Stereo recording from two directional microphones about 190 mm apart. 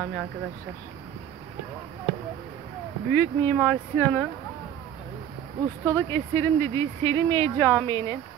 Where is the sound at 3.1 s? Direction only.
10° left (ahead or behind).